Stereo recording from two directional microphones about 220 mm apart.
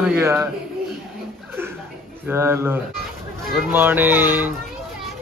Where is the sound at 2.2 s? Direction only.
10° right (ahead or behind).